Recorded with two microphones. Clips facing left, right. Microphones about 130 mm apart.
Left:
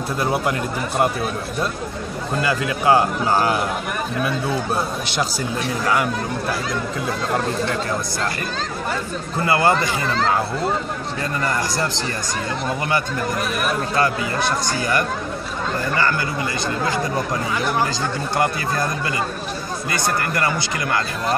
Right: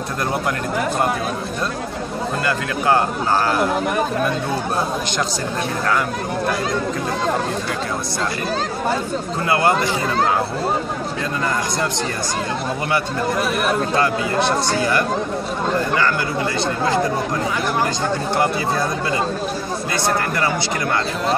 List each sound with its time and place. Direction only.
0.2 s speech: 5° left (ahead or behind)
2.4 s speech: 10° left (ahead or behind)
9.4 s speech: centre (ahead or behind)
18.4 s speech: centre (ahead or behind)